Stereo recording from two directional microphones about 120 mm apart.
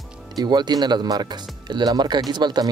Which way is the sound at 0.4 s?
35° right (ahead or behind).